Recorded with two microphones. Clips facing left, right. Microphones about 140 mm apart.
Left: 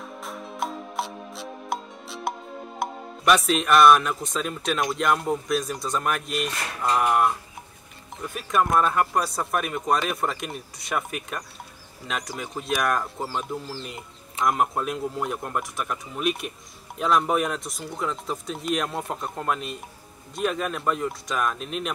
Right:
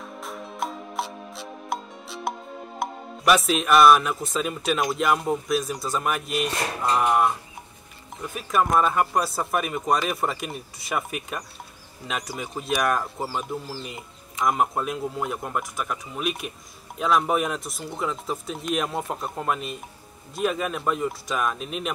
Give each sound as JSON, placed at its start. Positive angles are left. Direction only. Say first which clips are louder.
{"t": 0.0, "sound": "music", "louder": "even", "side_deg": 0}
{"t": 2.8, "sound": "speech", "louder": "right 1 dB", "side_deg": 0}
{"t": 6.5, "sound": "a sound", "louder": "right 5 dB", "side_deg": -30}
{"t": 6.8, "sound": "speech", "louder": "even", "side_deg": 0}